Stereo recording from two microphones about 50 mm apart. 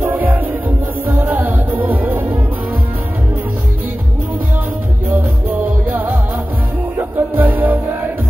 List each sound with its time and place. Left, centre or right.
0.0 s music: right
5.1 s music: right